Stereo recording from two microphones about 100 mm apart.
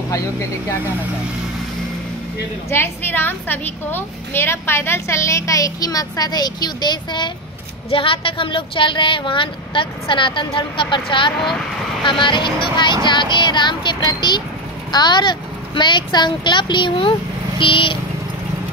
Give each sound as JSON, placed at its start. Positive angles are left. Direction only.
{"t": 0.1, "sound": "speech", "side_deg": 30}
{"t": 2.7, "sound": "a woman's voice", "side_deg": 20}
{"t": 7.9, "sound": "a child's voice", "side_deg": 65}